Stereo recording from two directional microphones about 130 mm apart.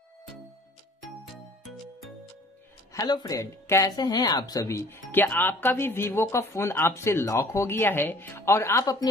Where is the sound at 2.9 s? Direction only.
30° left (ahead or behind).